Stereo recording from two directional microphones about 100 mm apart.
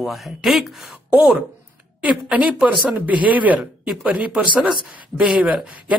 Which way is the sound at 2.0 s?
10° right (ahead or behind).